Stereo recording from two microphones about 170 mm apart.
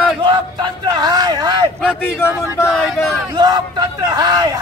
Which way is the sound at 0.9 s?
25° right (ahead or behind).